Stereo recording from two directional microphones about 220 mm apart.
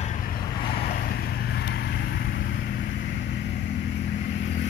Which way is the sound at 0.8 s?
45° left (ahead or behind).